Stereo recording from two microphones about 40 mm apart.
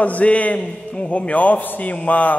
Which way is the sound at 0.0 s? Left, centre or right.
Left.